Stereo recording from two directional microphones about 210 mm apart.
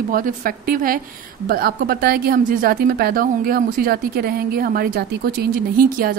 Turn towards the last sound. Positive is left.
turn(degrees=-45)  # may be behind; listen again after turning